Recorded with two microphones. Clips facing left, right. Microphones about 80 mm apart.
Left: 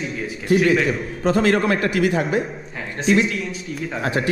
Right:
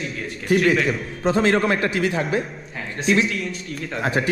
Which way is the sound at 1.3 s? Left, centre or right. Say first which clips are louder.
Left 1 dB; right.